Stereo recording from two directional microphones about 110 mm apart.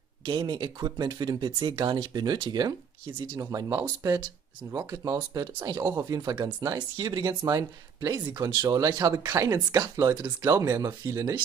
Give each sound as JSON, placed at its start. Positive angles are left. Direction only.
{"t": 0.3, "sound": "speech", "side_deg": -45}